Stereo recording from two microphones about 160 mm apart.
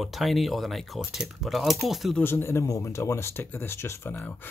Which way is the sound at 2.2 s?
15° left (ahead or behind).